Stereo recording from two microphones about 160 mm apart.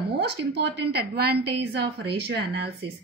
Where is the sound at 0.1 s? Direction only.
90° right.